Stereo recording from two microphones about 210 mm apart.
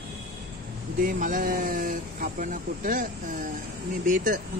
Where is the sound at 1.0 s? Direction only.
40° right (ahead or behind).